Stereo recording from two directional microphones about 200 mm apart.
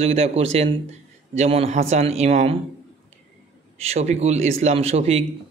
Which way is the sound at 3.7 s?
30° right (ahead or behind).